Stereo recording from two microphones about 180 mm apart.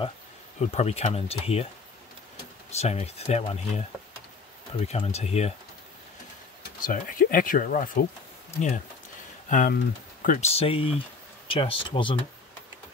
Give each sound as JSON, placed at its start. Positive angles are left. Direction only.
{"t": 0.6, "sound": "speech", "side_deg": 35}
{"t": 2.8, "sound": "speech", "side_deg": 35}
{"t": 4.8, "sound": "speech", "side_deg": 35}
{"t": 6.8, "sound": "speech", "side_deg": 50}